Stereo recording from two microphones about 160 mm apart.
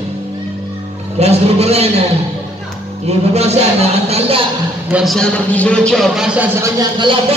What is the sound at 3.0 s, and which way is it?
A man's voice, 40° right (ahead or behind).